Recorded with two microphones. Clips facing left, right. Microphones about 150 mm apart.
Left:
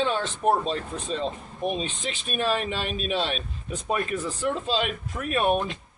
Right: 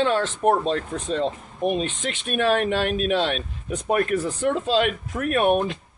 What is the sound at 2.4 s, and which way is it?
Speech, 65° right (ahead or behind).